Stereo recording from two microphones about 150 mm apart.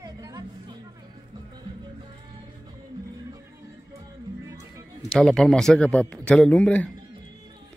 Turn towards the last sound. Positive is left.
turn(degrees=10)  # may be behind; listen again after turning